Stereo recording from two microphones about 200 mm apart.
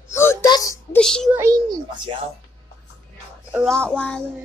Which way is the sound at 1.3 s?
15° right (ahead or behind).